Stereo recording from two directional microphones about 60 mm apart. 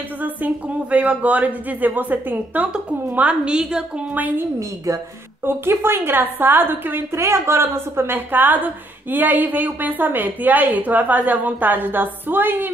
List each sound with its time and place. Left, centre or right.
0.2 s speech: right
4.1 s speech: right
4.6 s a woman's voice: right
5.4 s a woman's voice: right
7.2 s a woman's voice: right